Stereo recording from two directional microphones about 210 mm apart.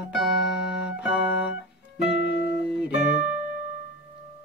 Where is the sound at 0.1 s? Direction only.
Centre (ahead or behind).